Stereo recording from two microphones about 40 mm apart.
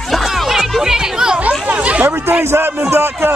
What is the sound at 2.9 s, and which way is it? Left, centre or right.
Speech, right.